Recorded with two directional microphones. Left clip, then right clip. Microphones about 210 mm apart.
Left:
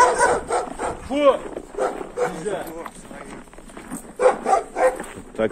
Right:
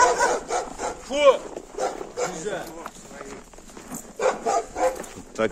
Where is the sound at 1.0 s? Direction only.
65° right (ahead or behind).